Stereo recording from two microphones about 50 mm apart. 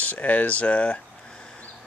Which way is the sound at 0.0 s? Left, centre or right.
Left.